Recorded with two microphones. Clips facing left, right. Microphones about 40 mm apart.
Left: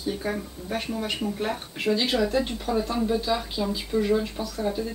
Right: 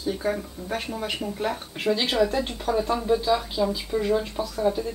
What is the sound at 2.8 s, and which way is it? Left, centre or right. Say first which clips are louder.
Speech: right 3 dB; centre.